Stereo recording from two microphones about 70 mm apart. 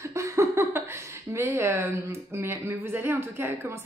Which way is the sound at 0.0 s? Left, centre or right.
Right.